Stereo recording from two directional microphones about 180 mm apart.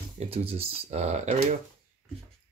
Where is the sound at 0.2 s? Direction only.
35° right (ahead or behind).